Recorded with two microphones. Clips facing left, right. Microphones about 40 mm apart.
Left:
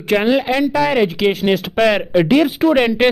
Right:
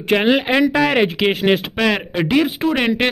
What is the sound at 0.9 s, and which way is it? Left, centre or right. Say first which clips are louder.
Speech: left 1 dB; right.